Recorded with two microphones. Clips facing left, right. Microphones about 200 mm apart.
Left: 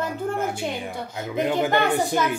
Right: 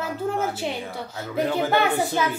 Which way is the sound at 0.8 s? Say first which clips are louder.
Left 2 dB; 15° left (ahead or behind).